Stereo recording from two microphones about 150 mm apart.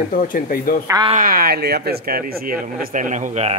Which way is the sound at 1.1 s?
70° right (ahead or behind).